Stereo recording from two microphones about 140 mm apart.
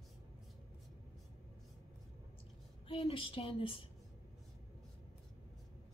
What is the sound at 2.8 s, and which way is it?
Speech, 40° left (ahead or behind).